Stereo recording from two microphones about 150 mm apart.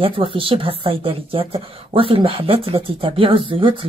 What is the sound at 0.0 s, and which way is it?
A woman's voice, 35° right (ahead or behind).